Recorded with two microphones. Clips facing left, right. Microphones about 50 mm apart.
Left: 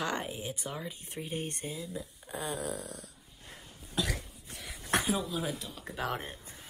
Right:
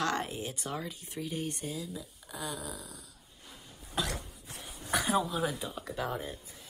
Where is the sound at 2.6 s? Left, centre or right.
Left.